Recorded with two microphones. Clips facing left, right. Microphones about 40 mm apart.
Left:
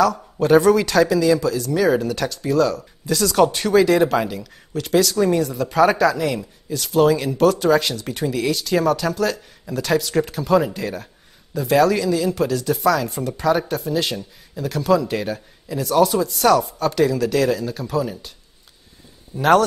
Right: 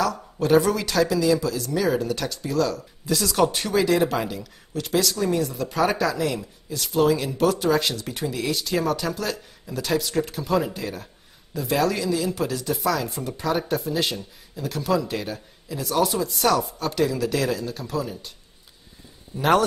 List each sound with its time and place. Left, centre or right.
0.0 s speech: centre